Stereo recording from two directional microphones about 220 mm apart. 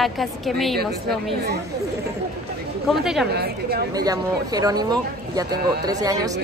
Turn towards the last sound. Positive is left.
turn(degrees=-15)  # may be behind; listen again after turning